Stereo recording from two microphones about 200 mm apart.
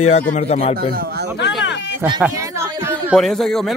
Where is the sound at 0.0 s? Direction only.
35° left (ahead or behind).